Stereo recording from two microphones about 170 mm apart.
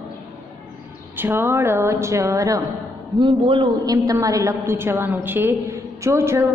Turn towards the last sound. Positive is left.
turn(degrees=-15)  # may be behind; listen again after turning